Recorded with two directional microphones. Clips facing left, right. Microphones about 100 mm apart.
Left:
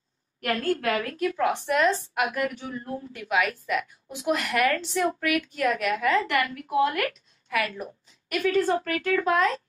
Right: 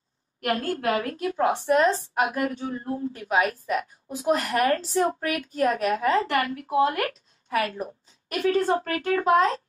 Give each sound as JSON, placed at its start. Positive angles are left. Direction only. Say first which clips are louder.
{"t": 0.5, "sound": "a woman's voice", "louder": "right 1 dB", "side_deg": -25}